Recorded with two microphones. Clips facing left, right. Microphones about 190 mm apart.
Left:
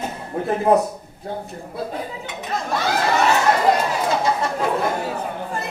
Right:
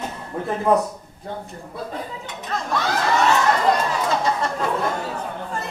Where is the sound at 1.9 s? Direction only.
10° left (ahead or behind).